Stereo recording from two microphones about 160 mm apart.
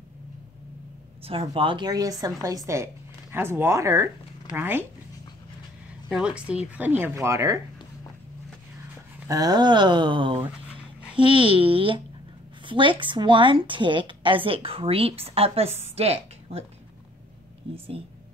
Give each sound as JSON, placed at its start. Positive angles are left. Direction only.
{"t": 1.2, "sound": "a woman's voice", "side_deg": -35}
{"t": 6.0, "sound": "a woman's voice", "side_deg": -5}
{"t": 9.3, "sound": "speech", "side_deg": -25}
{"t": 10.4, "sound": "dog", "side_deg": -10}
{"t": 11.1, "sound": "a woman's voice", "side_deg": -30}
{"t": 17.7, "sound": "a woman's voice", "side_deg": -35}